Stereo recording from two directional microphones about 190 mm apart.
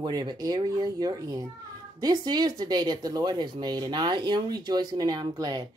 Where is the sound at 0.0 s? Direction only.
20° right (ahead or behind).